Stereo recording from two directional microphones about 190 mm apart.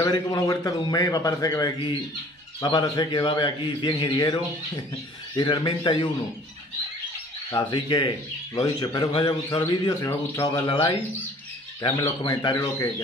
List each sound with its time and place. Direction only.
0.0 s a man's voice: 20° left (ahead or behind)
7.5 s a man's voice: 25° left (ahead or behind)
10.7 s a man's voice: 25° left (ahead or behind)
12.3 s speech: 20° left (ahead or behind)